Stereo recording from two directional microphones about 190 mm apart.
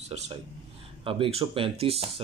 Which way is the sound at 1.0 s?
30° right (ahead or behind).